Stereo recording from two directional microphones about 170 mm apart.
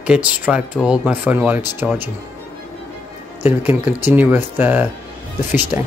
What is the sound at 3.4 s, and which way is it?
Speech, 10° right (ahead or behind).